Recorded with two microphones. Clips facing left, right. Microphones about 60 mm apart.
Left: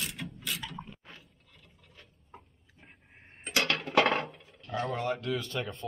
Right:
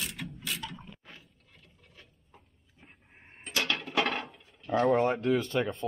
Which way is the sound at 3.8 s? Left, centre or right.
Left.